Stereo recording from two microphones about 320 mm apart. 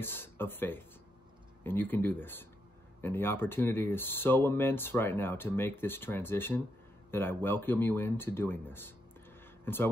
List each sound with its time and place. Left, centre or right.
0.0 s speech: centre